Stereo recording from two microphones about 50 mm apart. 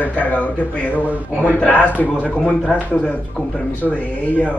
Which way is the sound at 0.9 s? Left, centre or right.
Right.